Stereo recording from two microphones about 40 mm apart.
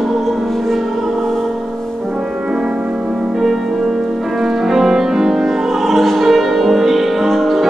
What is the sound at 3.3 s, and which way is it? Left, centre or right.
Music, centre.